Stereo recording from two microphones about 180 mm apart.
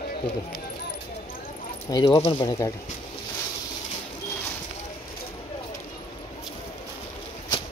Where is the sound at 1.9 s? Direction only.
20° left (ahead or behind).